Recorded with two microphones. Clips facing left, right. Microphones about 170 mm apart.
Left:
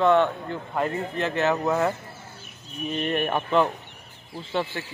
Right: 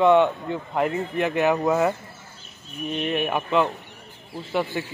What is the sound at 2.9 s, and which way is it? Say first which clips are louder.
Speech: right 1 dB; centre (ahead or behind).